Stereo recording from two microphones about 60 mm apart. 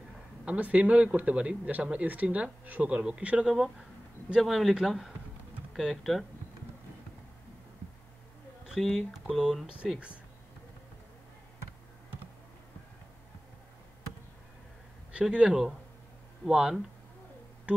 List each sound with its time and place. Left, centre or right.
0.5 s a man's voice: right
3.4 s speech: centre
8.6 s speech: centre
15.3 s speech: centre
17.7 s a sound: right